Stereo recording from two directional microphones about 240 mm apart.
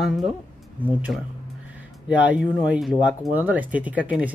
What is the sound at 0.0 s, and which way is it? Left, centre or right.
Speech, centre.